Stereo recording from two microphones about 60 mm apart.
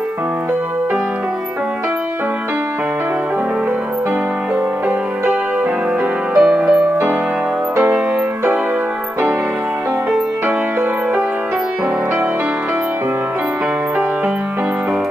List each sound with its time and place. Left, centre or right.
6.3 s music: centre